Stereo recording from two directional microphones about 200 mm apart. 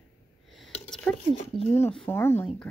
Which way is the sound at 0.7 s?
5° left (ahead or behind).